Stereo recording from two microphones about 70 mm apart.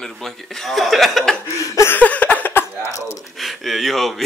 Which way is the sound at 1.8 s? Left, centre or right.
Left.